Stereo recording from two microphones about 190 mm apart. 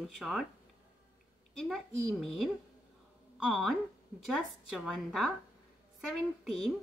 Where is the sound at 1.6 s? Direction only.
Centre (ahead or behind).